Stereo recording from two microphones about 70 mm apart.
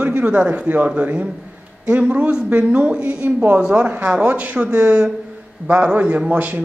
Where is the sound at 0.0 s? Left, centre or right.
Right.